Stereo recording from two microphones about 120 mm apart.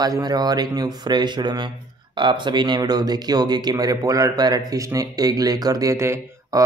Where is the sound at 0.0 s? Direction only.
35° right (ahead or behind).